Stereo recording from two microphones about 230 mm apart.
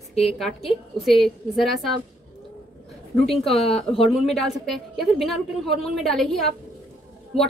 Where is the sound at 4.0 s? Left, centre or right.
Centre.